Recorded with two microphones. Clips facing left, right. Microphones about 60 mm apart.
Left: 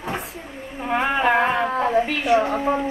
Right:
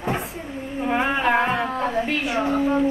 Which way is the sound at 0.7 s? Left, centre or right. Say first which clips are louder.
Left 1 dB; centre.